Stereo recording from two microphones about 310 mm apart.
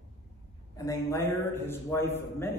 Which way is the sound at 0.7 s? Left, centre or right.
Centre.